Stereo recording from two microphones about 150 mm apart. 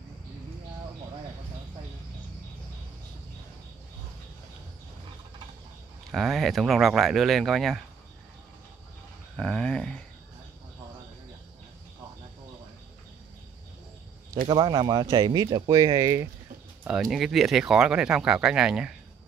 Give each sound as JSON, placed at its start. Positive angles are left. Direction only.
{"t": 6.1, "sound": "speech", "side_deg": 0}
{"t": 9.4, "sound": "speech", "side_deg": 5}
{"t": 14.5, "sound": "speech", "side_deg": -30}
{"t": 16.8, "sound": "speech", "side_deg": -5}